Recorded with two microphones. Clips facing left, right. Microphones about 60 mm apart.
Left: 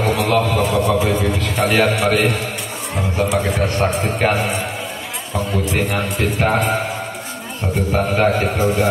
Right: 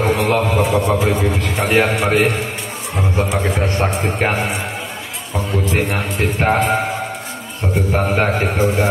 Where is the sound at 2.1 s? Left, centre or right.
Centre.